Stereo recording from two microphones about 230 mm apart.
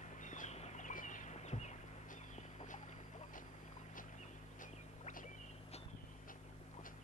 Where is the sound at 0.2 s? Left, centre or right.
Left.